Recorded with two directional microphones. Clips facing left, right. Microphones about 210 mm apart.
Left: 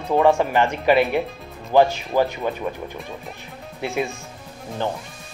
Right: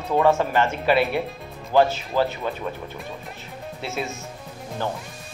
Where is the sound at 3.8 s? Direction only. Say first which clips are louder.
Left 5 dB; 15° left (ahead or behind).